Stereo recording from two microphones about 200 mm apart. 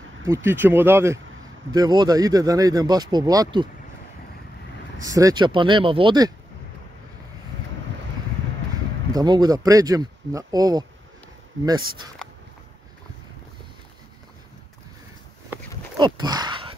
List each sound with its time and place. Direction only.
0.3 s speech: 10° right (ahead or behind)
5.0 s speech: 15° right (ahead or behind)
9.1 s speech: 20° right (ahead or behind)
16.0 s a sound: 20° right (ahead or behind)